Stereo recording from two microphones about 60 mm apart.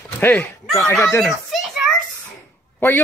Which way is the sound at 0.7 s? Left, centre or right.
Left.